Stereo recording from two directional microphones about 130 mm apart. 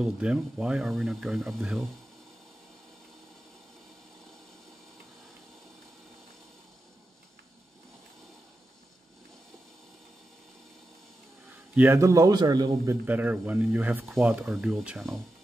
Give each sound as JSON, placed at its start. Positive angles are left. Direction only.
{"t": 0.0, "sound": "speech", "side_deg": -5}
{"t": 11.7, "sound": "a man's voice", "side_deg": -20}
{"t": 13.0, "sound": "speech", "side_deg": -15}